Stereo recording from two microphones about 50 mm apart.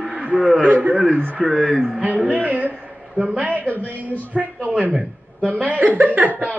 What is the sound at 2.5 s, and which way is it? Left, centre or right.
Speech, right.